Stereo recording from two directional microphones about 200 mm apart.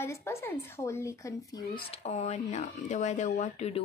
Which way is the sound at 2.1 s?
35° left (ahead or behind).